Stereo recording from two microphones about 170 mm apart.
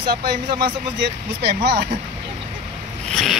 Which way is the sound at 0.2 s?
85° right.